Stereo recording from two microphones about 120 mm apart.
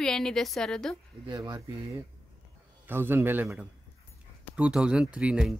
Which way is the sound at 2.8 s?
15° right (ahead or behind).